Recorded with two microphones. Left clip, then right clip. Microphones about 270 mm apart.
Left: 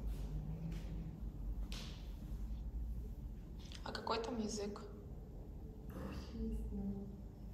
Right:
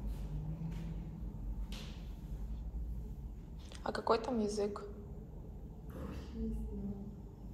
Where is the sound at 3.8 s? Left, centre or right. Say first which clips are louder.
Right 7 dB; centre.